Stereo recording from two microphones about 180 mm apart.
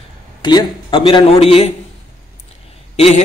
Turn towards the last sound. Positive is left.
turn(degrees=35)  # may be behind; listen again after turning